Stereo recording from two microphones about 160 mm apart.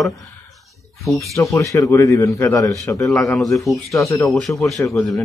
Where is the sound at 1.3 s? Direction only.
20° left (ahead or behind).